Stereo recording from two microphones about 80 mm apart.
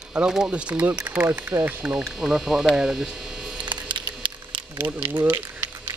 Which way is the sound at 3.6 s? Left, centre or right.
Right.